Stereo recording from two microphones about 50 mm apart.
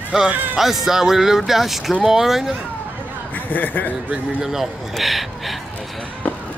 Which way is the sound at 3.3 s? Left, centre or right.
Left.